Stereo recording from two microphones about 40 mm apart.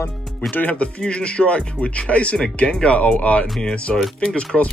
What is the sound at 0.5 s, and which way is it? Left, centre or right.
Speech, left.